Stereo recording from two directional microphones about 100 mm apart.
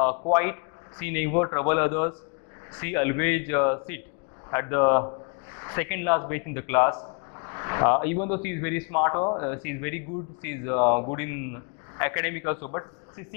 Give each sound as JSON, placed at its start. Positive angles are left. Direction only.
{"t": 0.0, "sound": "a man's voice", "side_deg": 20}